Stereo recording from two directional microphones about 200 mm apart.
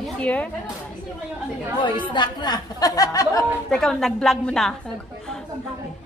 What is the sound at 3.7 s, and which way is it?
Speech, centre (ahead or behind).